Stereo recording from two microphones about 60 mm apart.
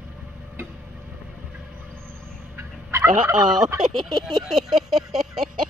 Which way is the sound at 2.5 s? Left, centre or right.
Right.